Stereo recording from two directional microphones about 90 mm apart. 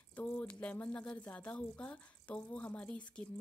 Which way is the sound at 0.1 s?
20° left (ahead or behind).